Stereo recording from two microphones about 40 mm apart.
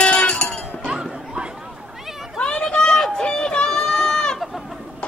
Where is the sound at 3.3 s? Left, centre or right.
Left.